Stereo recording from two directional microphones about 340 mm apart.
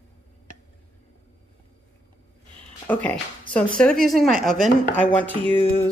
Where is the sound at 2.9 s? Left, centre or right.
Centre.